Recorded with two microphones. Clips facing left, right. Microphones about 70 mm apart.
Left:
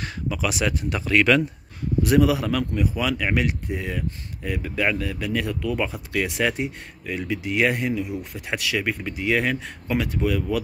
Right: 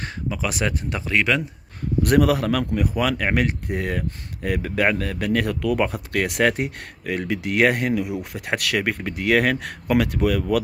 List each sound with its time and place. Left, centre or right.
0.0 s speech: right
2.0 s a man's voice: right